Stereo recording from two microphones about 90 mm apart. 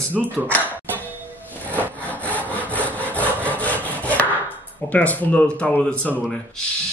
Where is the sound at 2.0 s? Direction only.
15° left (ahead or behind).